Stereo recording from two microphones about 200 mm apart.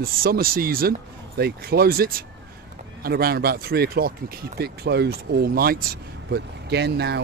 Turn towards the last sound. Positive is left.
turn(degrees=-55)  # may be behind; listen again after turning